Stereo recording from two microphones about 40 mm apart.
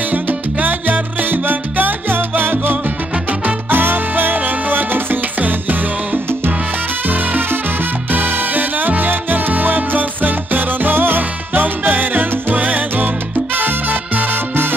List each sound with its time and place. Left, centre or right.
0.1 s salsa music: right
3.3 s music: right
13.6 s salsa music: right